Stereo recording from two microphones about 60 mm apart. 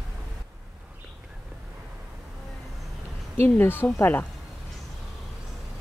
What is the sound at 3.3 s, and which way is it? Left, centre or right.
Speech, left.